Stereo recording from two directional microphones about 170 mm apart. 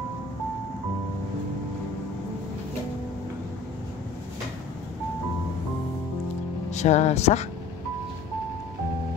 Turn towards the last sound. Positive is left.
turn(degrees=40)  # may be behind; listen again after turning